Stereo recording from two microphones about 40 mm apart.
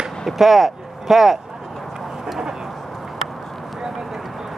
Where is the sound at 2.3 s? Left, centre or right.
Centre.